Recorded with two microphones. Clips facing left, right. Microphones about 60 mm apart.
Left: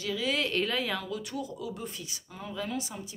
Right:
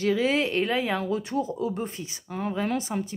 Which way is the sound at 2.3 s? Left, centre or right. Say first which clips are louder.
Right 8 dB; right.